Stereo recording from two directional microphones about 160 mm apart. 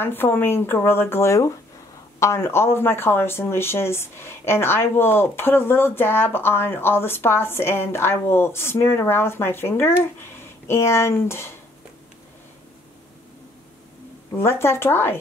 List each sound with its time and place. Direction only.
0.0 s speech: 15° left (ahead or behind)
14.3 s speech: 15° left (ahead or behind)